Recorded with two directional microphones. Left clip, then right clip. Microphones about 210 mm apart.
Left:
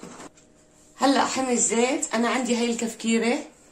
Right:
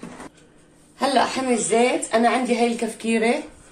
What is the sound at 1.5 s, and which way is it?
A woman's voice, 55° left (ahead or behind).